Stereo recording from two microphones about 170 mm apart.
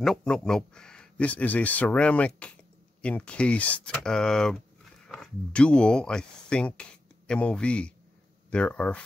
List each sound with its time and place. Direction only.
0.0 s speech: 5° left (ahead or behind)